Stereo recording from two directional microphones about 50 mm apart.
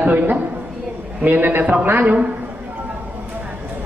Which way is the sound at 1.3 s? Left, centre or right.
Right.